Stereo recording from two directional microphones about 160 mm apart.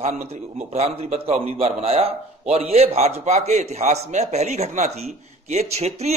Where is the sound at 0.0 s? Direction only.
45° right (ahead or behind).